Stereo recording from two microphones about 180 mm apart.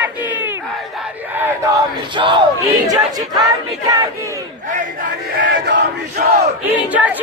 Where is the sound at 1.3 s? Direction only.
10° right (ahead or behind).